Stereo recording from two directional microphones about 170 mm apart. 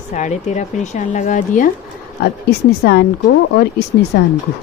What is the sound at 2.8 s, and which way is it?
Speech, 80° left.